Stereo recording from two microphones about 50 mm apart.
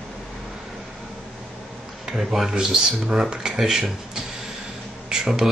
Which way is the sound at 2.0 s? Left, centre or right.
Centre.